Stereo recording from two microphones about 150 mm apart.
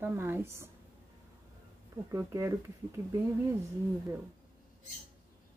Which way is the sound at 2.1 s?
20° right (ahead or behind).